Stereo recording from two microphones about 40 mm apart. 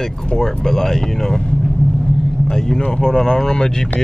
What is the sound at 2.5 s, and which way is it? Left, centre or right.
A man's voice, centre.